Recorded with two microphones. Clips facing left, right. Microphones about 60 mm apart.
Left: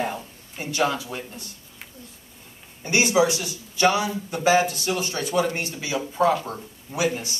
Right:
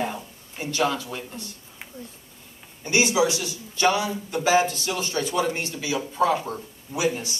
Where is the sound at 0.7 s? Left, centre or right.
Centre.